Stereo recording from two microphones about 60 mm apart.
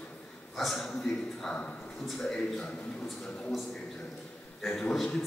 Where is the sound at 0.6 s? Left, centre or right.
Centre; by 3.5 s left.